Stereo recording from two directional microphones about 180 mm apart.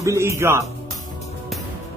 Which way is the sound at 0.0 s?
15° right (ahead or behind).